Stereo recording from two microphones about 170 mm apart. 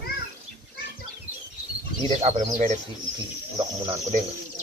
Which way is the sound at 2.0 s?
40° right (ahead or behind).